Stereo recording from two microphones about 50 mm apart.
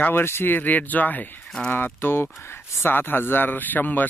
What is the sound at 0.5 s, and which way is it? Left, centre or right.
Speech, left.